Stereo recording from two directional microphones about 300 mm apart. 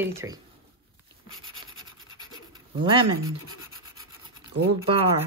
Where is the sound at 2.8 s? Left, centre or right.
Centre.